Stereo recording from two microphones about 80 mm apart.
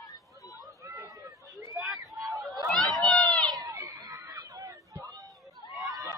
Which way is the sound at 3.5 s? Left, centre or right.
Right.